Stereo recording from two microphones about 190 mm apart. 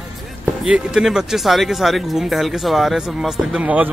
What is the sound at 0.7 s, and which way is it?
Speech, 5° right (ahead or behind).